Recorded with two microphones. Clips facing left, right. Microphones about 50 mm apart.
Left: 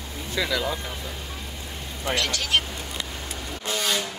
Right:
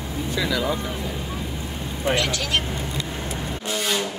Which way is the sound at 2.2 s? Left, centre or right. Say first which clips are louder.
Right 1 dB; centre.